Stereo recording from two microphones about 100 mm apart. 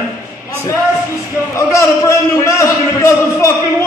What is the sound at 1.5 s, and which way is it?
A man's voice, 30° left (ahead or behind).